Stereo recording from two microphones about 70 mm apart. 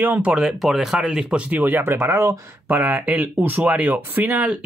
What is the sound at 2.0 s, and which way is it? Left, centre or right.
Speech, right.